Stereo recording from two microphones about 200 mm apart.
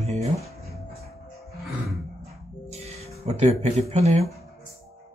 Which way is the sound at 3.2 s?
30° right (ahead or behind).